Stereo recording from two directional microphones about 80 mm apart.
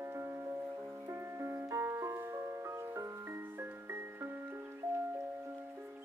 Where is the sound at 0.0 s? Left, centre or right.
Right.